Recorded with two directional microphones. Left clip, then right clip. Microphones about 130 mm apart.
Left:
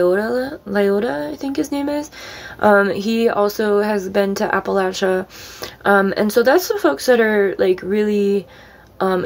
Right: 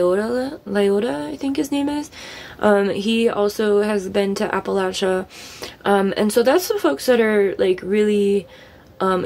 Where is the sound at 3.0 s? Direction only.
Centre (ahead or behind).